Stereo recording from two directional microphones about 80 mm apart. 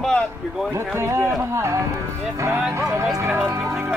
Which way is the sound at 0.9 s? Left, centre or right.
Right.